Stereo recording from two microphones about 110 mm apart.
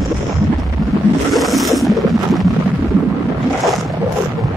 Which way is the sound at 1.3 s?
Centre (ahead or behind).